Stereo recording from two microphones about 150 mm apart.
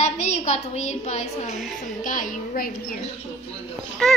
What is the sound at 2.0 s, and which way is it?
Speech, 65° left (ahead or behind).